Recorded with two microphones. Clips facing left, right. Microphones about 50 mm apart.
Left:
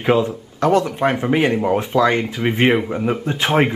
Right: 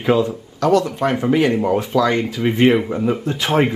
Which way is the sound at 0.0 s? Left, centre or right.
Left.